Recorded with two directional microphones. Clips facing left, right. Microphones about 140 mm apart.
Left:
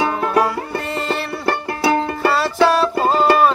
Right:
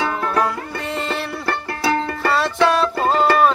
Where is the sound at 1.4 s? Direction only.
20° left (ahead or behind).